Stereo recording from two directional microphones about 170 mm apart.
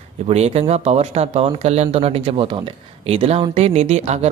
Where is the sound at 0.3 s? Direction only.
40° right (ahead or behind).